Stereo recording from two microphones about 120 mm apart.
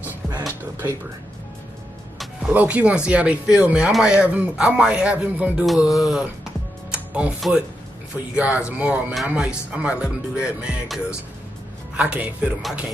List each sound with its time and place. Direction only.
0.5 s speech: 15° right (ahead or behind)
2.5 s speech: 10° right (ahead or behind)